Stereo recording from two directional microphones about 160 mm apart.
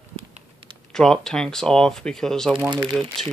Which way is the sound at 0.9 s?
5° left (ahead or behind).